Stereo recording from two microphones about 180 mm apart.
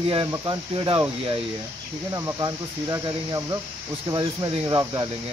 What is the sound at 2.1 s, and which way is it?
Speech, 20° right (ahead or behind).